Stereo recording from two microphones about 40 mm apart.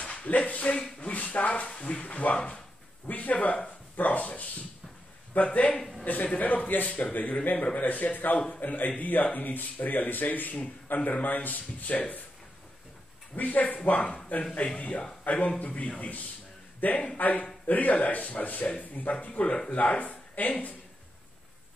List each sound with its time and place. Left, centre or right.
0.0 s speech: left
3.1 s speech: left
5.8 s a man's voice: centre
6.0 s speech: left
13.4 s speech: left